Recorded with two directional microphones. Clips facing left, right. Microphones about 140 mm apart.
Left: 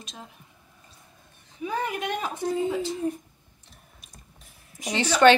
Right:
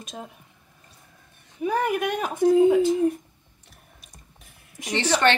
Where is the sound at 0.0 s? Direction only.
50° right (ahead or behind).